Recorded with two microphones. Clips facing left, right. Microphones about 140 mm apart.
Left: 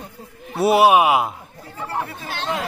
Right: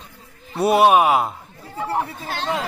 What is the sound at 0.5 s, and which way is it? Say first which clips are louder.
Speech: even; 5° left (ahead or behind).